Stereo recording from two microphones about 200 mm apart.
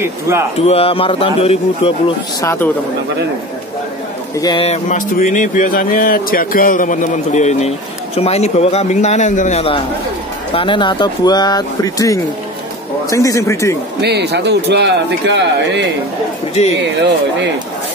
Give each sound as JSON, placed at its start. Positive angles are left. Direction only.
{"t": 0.0, "sound": "speech", "side_deg": -15}
{"t": 0.7, "sound": "speech", "side_deg": 30}
{"t": 2.4, "sound": "speech", "side_deg": 15}
{"t": 4.4, "sound": "speech", "side_deg": 20}
{"t": 4.6, "sound": "speech", "side_deg": 40}
{"t": 14.0, "sound": "speech", "side_deg": -55}
{"t": 16.6, "sound": "speech", "side_deg": 35}